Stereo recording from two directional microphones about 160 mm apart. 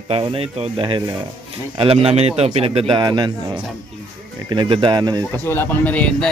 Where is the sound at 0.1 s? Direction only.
35° right (ahead or behind).